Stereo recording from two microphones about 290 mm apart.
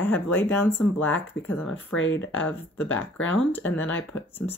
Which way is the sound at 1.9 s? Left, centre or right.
Left.